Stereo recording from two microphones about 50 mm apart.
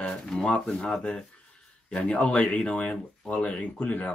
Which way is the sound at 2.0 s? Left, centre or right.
Left.